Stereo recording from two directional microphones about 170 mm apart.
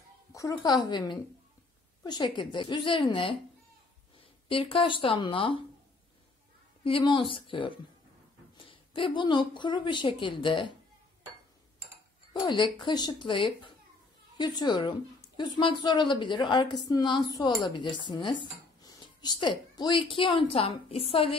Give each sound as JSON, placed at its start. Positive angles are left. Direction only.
{"t": 0.3, "sound": "a sound", "side_deg": 20}
{"t": 0.6, "sound": "a woman's voice", "side_deg": 25}
{"t": 4.5, "sound": "speech", "side_deg": 30}
{"t": 6.8, "sound": "a woman's voice", "side_deg": 30}
{"t": 12.4, "sound": "a woman's voice", "side_deg": 30}